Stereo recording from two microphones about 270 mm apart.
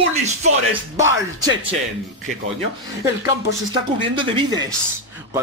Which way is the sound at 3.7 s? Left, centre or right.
Centre.